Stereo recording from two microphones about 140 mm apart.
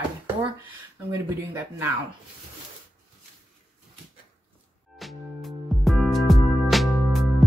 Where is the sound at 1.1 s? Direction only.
15° right (ahead or behind).